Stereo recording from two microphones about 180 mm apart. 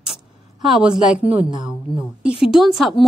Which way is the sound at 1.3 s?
25° right (ahead or behind).